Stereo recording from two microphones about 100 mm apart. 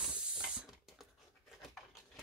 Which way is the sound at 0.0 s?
10° right (ahead or behind).